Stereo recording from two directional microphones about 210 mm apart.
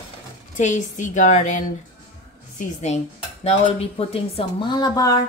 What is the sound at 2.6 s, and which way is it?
A woman's voice, 35° left (ahead or behind).